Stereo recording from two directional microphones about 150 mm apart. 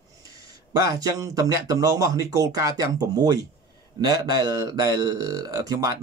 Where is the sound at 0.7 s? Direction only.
20° right (ahead or behind).